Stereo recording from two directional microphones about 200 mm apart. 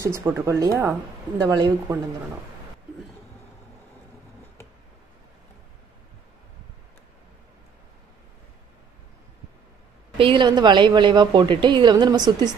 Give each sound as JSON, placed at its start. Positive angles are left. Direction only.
{"t": 0.0, "sound": "a woman's voice", "side_deg": -15}
{"t": 10.1, "sound": "a woman's voice", "side_deg": -25}